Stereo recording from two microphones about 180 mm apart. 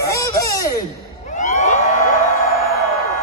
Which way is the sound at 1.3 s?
40° left (ahead or behind).